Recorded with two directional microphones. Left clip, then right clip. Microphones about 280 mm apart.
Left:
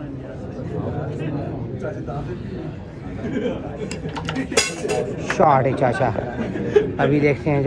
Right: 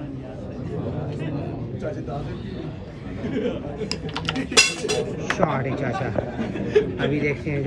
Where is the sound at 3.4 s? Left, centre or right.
Left.